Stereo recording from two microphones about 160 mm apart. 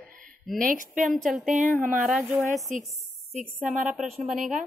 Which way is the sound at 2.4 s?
50° right (ahead or behind).